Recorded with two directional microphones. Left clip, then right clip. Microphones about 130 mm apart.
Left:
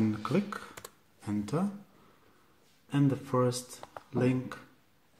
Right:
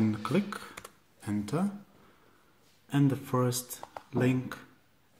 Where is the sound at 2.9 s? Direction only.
5° right (ahead or behind).